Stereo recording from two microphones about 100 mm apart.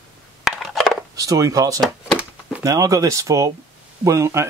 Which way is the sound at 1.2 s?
35° right (ahead or behind).